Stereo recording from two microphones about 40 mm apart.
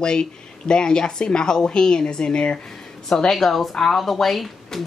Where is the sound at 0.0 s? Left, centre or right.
Left.